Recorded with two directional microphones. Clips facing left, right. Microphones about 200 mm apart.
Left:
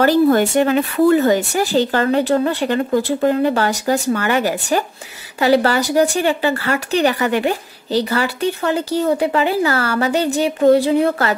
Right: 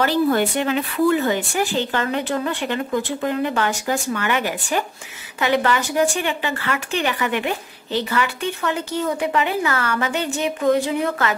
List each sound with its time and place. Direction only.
0.0 s speech: 45° left (ahead or behind)